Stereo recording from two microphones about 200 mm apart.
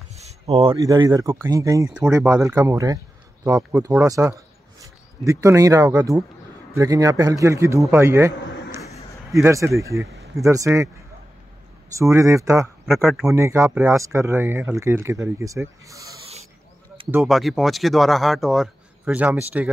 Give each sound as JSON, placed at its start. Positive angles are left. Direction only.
{"t": 0.1, "sound": "a sound", "side_deg": -35}
{"t": 0.7, "sound": "speech", "side_deg": -20}
{"t": 9.3, "sound": "speech", "side_deg": -15}
{"t": 12.0, "sound": "speech", "side_deg": -15}
{"t": 12.8, "sound": "speech", "side_deg": 0}
{"t": 13.3, "sound": "speech", "side_deg": -15}
{"t": 17.1, "sound": "speech", "side_deg": 0}